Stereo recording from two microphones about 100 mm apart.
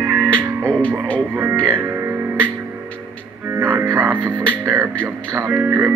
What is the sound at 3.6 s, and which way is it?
Music, 20° right (ahead or behind).